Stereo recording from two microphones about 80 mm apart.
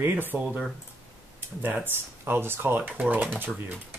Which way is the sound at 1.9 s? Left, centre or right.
Right.